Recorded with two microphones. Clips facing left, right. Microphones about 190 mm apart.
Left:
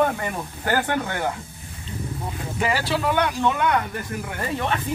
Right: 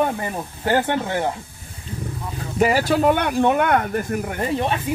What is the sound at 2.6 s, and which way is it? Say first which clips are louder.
Speech: right 7 dB; 45° right (ahead or behind).